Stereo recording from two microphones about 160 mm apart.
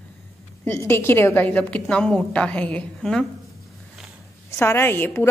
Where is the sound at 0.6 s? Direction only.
15° left (ahead or behind).